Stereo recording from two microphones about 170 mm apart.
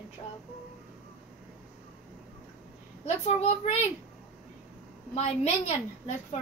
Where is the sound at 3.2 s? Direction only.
40° left (ahead or behind).